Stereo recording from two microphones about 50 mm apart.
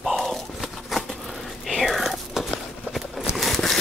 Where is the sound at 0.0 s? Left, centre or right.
Centre.